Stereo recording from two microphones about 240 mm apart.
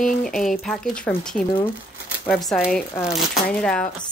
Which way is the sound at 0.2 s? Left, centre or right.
Centre.